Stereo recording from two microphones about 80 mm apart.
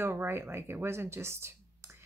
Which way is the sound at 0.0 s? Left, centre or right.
Right.